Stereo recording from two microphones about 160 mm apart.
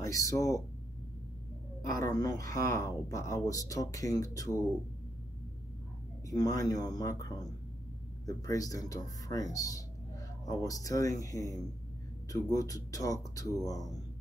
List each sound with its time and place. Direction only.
0.0 s speech: 20° left (ahead or behind)
2.0 s speech: 20° left (ahead or behind)
6.2 s speech: 20° left (ahead or behind)